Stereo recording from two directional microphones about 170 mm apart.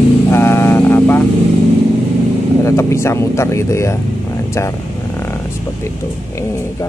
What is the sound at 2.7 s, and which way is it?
Speech, 15° left (ahead or behind).